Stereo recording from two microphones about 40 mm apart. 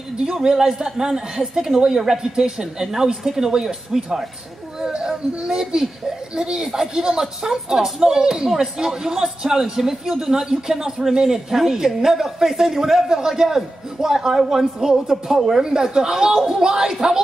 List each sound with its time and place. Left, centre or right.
0.2 s speech: centre